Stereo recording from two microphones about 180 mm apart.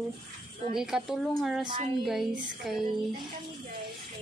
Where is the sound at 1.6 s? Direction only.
25° right (ahead or behind).